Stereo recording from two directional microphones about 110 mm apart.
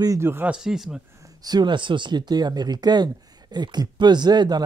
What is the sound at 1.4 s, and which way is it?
Speech, 40° right (ahead or behind).